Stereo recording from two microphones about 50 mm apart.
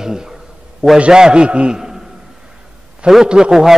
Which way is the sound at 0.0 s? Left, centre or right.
Centre.